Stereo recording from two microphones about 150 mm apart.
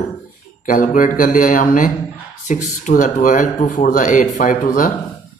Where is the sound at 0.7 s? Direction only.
60° left (ahead or behind).